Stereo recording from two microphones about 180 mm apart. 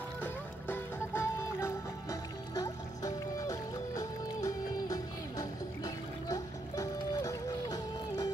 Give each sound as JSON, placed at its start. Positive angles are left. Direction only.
{"t": 0.2, "sound": "music", "side_deg": 10}